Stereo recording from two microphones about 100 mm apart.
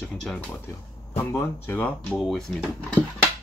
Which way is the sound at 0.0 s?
5° left (ahead or behind).